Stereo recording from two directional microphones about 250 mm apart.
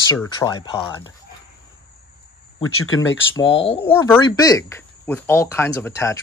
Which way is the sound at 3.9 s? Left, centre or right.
Centre.